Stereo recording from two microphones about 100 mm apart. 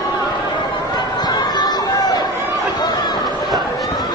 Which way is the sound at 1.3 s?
45° left (ahead or behind).